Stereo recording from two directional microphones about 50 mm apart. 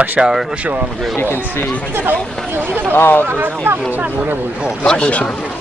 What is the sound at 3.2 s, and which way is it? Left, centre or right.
Speech, right.